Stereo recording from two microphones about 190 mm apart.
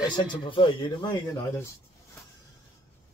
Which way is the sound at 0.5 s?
25° left (ahead or behind).